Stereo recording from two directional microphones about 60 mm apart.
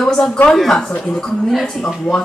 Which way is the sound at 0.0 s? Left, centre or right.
Centre.